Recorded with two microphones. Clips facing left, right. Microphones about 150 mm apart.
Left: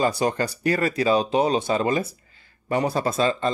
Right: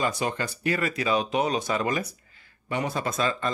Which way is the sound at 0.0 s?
35° left (ahead or behind).